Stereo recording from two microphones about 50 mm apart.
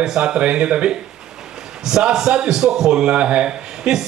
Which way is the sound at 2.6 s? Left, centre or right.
Centre.